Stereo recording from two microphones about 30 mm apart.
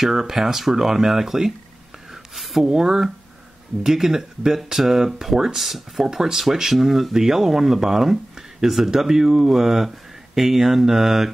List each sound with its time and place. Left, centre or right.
0.0 s speech: centre
2.3 s speech: centre
2.7 s speech: centre